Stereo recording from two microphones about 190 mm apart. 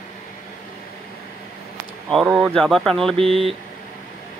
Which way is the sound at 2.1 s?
Centre (ahead or behind).